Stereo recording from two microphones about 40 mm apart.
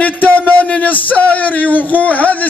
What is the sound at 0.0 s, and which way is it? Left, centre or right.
A man's voice, left.